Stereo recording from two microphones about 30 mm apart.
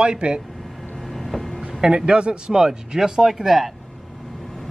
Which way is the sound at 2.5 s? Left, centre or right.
Centre.